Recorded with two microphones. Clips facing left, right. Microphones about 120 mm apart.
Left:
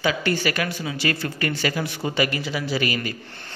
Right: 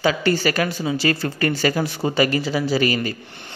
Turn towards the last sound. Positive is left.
turn(degrees=-35)  # may be behind; listen again after turning